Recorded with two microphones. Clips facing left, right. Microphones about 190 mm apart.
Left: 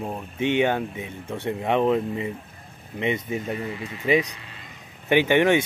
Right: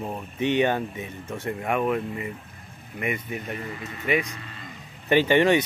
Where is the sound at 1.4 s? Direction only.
25° left (ahead or behind).